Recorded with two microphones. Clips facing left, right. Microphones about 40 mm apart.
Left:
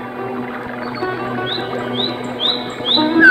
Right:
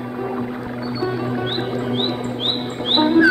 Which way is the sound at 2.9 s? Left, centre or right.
Left.